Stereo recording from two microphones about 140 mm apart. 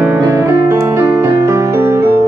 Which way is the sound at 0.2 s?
20° right (ahead or behind).